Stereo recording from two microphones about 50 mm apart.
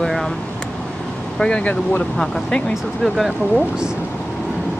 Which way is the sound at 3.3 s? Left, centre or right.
Centre.